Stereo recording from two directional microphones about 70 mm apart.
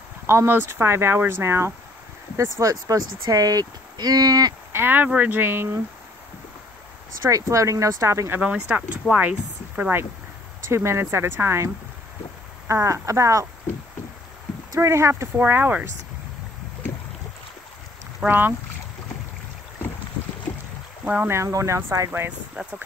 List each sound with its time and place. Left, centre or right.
0.3 s speech: right
4.7 s speech: right
7.2 s speech: right
8.4 s speech: centre
10.7 s speech: right
14.8 s speech: right
15.3 s speech: right
18.2 s speech: right
21.0 s boat: right
21.3 s speech: right
22.6 s speech: right